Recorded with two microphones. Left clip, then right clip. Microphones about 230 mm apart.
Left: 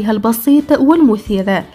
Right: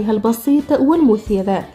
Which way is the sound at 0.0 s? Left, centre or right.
Left.